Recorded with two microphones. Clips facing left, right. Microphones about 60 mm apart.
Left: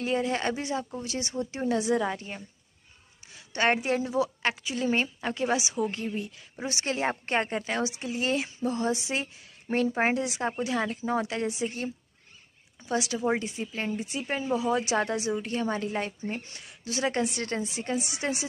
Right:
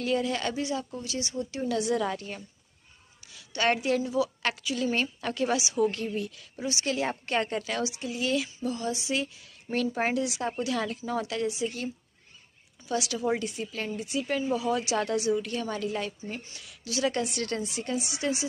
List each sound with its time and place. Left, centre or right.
0.0 s a woman's voice: left